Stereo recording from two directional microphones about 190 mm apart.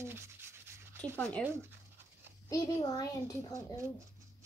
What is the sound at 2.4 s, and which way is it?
A child's voice, 20° left (ahead or behind).